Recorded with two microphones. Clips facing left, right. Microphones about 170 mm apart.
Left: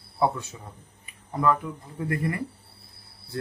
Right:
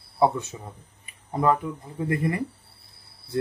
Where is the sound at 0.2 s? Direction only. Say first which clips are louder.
Right 3 dB; 20° right (ahead or behind).